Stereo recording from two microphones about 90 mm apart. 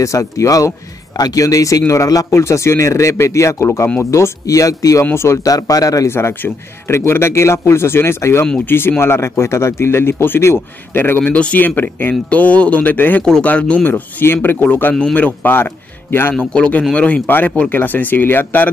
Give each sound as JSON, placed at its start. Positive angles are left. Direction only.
{"t": 0.0, "sound": "speech", "side_deg": 35}
{"t": 6.0, "sound": "a man's voice", "side_deg": 25}
{"t": 16.3, "sound": "a man's voice", "side_deg": 10}